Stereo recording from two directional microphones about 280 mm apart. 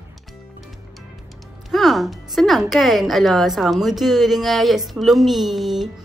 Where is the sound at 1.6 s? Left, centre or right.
Centre.